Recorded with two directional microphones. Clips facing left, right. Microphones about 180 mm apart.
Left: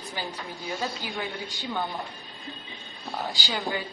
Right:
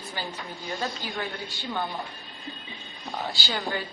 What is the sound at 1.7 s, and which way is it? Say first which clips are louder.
Speech: even; centre (ahead or behind).